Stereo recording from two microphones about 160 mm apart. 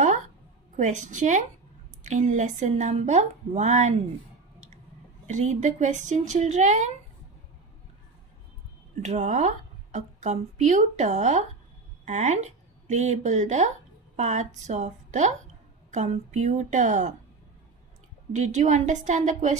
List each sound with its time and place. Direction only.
0.7 s speech: 50° right (ahead or behind)
5.2 s speech: 50° right (ahead or behind)
9.0 s speech: 45° right (ahead or behind)
18.3 s speech: 50° right (ahead or behind)